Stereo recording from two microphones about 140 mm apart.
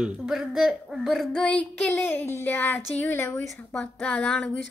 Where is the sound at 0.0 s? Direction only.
Centre (ahead or behind).